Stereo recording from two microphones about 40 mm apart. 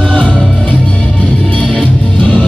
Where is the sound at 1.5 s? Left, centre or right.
Left.